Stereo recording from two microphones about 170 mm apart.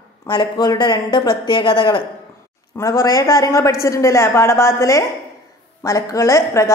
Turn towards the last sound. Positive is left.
turn(degrees=15)  # may be behind; listen again after turning